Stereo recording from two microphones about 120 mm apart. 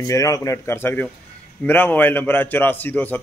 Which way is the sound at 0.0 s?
25° left (ahead or behind).